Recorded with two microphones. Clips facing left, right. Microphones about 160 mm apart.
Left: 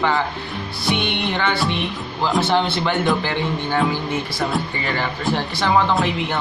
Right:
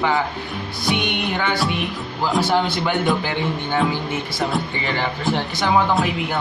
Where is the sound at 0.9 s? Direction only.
15° right (ahead or behind).